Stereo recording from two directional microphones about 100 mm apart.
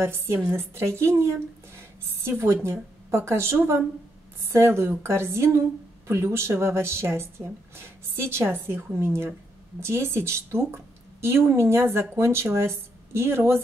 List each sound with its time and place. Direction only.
0.0 s a woman's voice: 25° right (ahead or behind)